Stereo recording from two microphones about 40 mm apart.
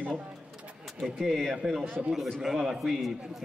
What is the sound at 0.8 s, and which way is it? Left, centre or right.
Speech, centre.